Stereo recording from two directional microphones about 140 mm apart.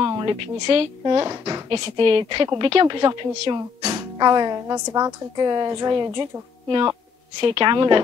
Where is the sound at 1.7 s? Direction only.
35° right (ahead or behind).